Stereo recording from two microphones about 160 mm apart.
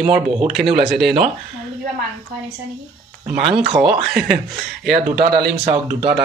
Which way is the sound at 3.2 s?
5° right (ahead or behind).